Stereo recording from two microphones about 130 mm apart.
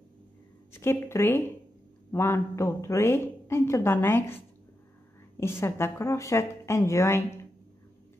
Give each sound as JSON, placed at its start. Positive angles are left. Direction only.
{"t": 0.7, "sound": "a woman's voice", "side_deg": 20}
{"t": 5.4, "sound": "a woman's voice", "side_deg": 20}